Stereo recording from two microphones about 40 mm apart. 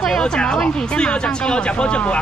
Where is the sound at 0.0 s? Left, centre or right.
Centre.